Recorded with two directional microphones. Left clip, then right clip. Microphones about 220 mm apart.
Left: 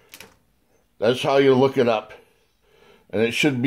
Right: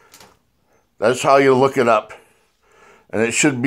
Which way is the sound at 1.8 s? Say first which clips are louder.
Right 5 dB; 10° right (ahead or behind).